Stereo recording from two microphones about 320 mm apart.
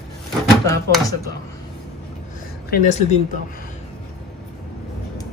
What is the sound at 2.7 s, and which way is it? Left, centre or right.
Speech, left.